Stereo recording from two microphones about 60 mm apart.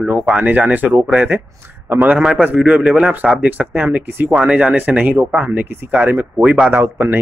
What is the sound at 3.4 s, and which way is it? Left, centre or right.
Speech, right.